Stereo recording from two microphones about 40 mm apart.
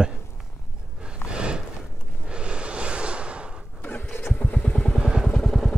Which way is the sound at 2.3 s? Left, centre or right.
Right.